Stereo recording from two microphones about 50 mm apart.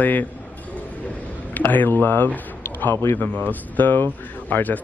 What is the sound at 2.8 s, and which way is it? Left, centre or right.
Speech, left.